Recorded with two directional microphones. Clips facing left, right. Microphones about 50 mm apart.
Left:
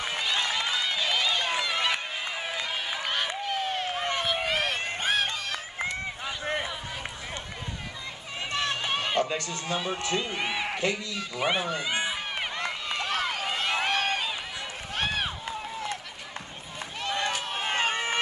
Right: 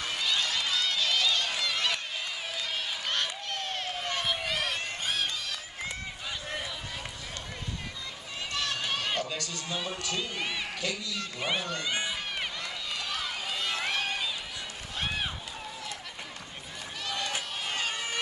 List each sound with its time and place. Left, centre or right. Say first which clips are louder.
0.0 s run: left 2 dB; left
2.4 s a sound: left 3 dB; centre
3.9 s a sound: left 4 dB; left
4.4 s run: left 4 dB; left
8.5 s run: left 4 dB; left
9.8 s a man's voice: left 4 dB; left
11.1 s speech: left 4 dB; centre
12.5 s run: left 5 dB; left
13.8 s a sound: left 4 dB; left
17.0 s run: left 5 dB; left